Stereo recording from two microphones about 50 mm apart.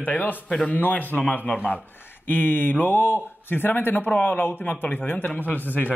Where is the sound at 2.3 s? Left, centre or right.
Left.